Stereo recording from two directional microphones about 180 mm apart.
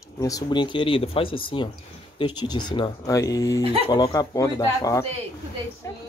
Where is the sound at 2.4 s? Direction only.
25° left (ahead or behind).